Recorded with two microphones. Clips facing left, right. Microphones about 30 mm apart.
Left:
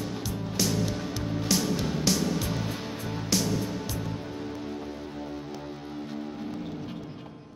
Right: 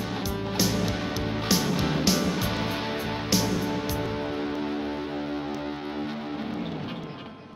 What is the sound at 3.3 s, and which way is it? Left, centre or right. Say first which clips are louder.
Music: right 1 dB; right.